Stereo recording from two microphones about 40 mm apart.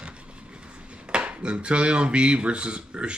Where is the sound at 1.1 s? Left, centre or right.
Right.